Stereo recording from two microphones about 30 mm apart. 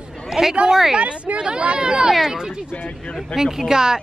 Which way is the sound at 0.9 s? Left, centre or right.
Right.